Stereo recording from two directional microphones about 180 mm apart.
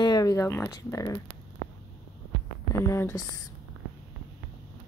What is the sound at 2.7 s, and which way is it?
Speech, 15° left (ahead or behind).